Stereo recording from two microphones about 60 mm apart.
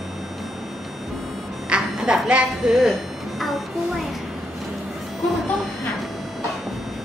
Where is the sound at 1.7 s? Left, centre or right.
Centre.